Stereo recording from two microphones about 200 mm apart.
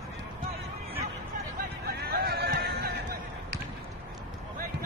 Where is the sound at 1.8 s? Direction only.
50° right (ahead or behind).